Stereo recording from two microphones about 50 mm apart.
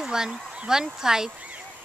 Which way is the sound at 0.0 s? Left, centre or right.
Centre.